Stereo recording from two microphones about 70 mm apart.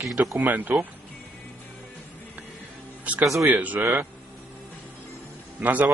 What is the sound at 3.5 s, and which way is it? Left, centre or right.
Speech, right.